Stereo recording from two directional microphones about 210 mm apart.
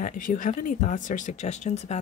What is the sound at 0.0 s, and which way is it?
Speech, 40° left (ahead or behind).